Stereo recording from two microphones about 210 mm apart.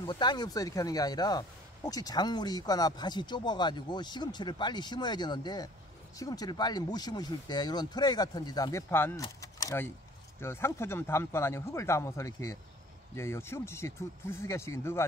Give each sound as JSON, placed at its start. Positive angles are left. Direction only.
{"t": 0.0, "sound": "speech", "side_deg": 20}